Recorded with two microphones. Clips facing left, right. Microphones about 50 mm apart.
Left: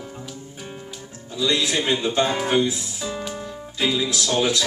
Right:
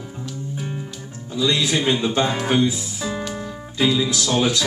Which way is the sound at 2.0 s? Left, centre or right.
Centre.